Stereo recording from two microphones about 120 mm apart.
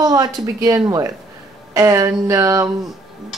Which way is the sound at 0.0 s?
30° right (ahead or behind).